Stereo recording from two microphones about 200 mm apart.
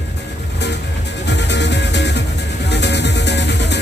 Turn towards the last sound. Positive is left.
turn(degrees=60)  # may be behind; listen again after turning